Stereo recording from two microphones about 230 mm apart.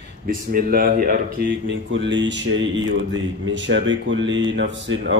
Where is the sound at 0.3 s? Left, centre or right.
Right.